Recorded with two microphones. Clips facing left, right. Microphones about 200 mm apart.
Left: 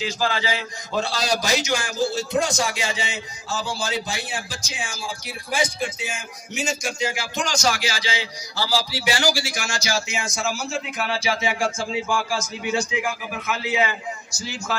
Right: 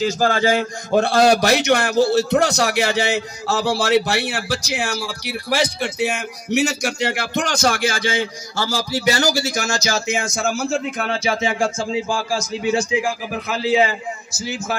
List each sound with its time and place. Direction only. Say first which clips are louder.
0.0 s a man's voice: right 7 dB; 45° right (ahead or behind)
11.6 s a man's voice: right 4 dB; 30° right (ahead or behind)
14.4 s a man's voice: right 4 dB; 20° right (ahead or behind)